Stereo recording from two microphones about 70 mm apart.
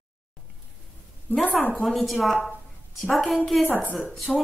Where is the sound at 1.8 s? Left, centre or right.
Centre.